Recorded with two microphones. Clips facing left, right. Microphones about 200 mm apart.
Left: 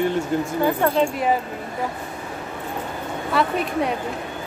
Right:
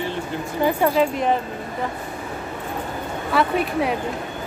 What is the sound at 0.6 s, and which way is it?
Speech, 10° right (ahead or behind).